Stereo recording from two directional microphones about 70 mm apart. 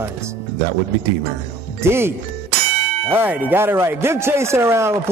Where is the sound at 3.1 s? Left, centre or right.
Right.